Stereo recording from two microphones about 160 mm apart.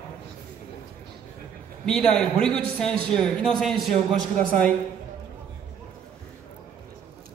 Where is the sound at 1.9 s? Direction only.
5° left (ahead or behind).